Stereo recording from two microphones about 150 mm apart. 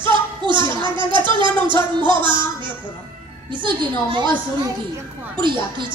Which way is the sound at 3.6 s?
30° right (ahead or behind).